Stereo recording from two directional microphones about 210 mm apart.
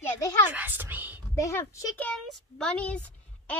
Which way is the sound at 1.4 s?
15° left (ahead or behind).